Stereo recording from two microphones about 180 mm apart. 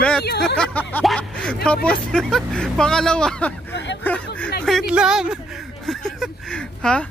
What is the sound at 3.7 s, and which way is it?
Speech, 75° left (ahead or behind).